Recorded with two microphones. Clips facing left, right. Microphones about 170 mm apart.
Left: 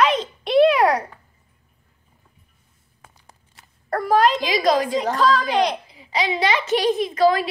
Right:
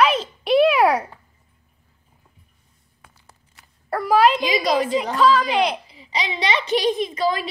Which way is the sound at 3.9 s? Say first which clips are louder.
Right 1 dB; 5° right (ahead or behind).